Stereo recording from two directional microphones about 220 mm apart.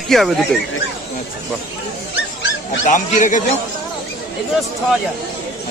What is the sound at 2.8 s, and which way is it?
Speech, 35° left (ahead or behind).